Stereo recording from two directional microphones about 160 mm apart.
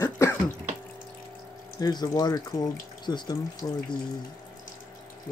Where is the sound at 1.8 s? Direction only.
25° left (ahead or behind).